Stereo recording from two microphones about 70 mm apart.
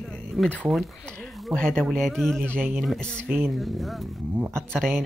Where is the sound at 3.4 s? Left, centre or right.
Centre.